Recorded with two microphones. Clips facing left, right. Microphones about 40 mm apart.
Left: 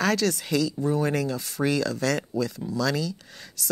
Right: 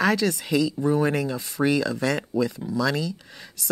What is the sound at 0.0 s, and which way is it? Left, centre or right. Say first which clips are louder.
Speech: right 2 dB; centre.